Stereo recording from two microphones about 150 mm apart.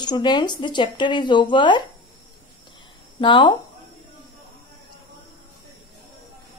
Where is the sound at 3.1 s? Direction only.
30° left (ahead or behind).